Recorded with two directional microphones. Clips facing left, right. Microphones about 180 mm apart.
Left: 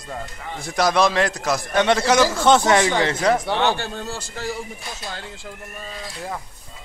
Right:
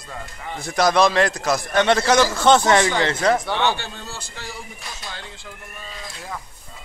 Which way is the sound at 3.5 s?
40° left (ahead or behind).